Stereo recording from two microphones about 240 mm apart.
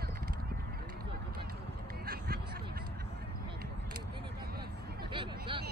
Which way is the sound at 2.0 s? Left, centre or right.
Right.